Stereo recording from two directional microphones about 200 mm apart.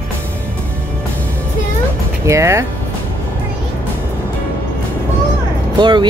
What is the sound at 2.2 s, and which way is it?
Speech, 15° right (ahead or behind).